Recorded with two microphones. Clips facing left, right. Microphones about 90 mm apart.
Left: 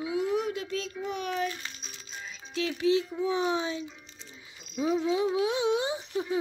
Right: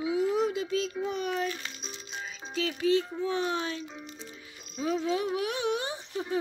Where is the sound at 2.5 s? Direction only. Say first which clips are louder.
Even; 5° left (ahead or behind).